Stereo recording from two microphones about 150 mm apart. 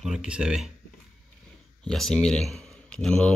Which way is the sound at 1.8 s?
5° left (ahead or behind).